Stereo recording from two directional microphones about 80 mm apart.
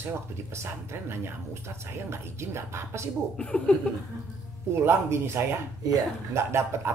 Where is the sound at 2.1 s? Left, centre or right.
Right.